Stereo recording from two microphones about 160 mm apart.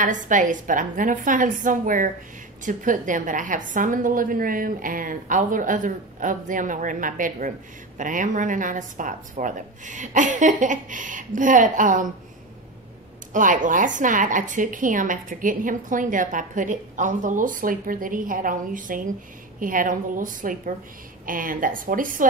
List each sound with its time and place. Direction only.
0.0 s speech: 55° right (ahead or behind)
13.3 s speech: 55° right (ahead or behind)